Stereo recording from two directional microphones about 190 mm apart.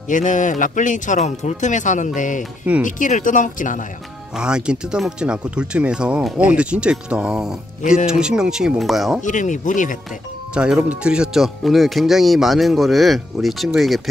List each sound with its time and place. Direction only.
0.1 s speech: 40° left (ahead or behind)
4.4 s speech: 5° right (ahead or behind)
9.2 s speech: 40° left (ahead or behind)
10.5 s speech: 5° right (ahead or behind)